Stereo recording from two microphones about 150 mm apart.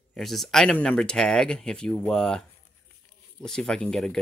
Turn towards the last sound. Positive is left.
turn(degrees=5)  # may be behind; listen again after turning